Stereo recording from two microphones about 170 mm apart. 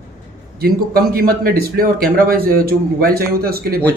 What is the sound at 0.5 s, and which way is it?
A man's voice, 60° right (ahead or behind).